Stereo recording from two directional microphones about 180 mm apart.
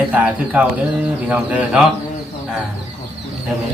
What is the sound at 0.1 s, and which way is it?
Speech, 10° right (ahead or behind).